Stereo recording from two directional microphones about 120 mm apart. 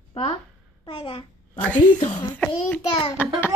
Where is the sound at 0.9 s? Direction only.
45° left (ahead or behind).